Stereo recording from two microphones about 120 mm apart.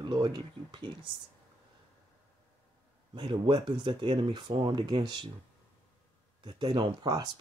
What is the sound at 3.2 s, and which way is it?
Speech, 45° right (ahead or behind).